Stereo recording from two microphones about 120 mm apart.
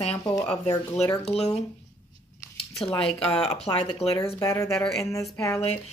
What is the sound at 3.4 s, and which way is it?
Speech, 60° left (ahead or behind).